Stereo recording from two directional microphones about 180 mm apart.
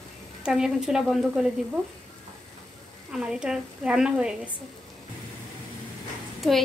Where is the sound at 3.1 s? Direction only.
5° right (ahead or behind).